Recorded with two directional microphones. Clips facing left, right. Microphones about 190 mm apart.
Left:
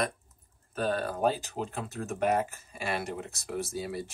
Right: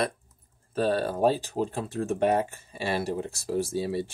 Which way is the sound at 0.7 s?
30° right (ahead or behind).